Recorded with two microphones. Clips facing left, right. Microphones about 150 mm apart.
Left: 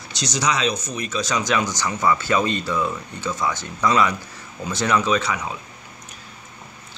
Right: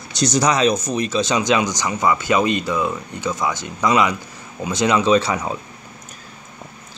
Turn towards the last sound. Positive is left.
turn(degrees=-35)  # may be behind; listen again after turning